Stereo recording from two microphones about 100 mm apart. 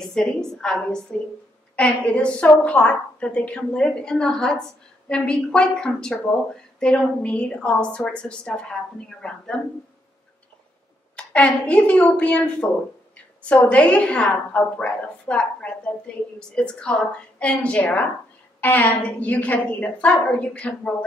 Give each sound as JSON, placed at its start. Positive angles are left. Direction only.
{"t": 0.0, "sound": "a woman's voice", "side_deg": 5}
{"t": 11.1, "sound": "a woman's voice", "side_deg": 10}